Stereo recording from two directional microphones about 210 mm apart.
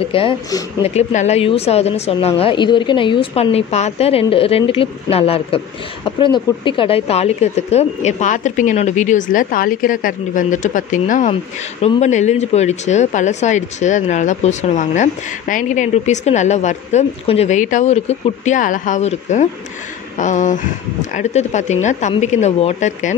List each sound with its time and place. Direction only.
0.1 s a woman's voice: 25° left (ahead or behind)
0.8 s a woman's voice: 30° left (ahead or behind)